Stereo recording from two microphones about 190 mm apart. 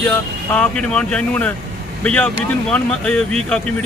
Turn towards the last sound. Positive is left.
turn(degrees=5)  # may be behind; listen again after turning